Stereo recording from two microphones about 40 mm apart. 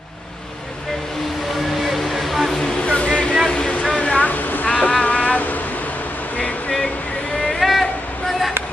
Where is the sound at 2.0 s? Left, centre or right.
Centre.